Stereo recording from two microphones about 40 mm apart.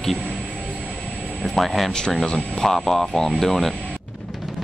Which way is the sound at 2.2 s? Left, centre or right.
Centre.